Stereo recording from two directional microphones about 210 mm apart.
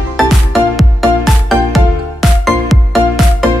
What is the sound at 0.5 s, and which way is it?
Music, centre (ahead or behind).